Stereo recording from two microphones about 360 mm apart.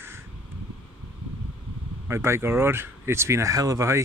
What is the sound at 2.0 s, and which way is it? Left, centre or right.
Speech, centre.